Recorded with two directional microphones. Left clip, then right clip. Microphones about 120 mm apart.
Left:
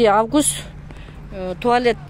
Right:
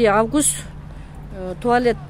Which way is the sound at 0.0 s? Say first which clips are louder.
Left 1 dB; centre (ahead or behind).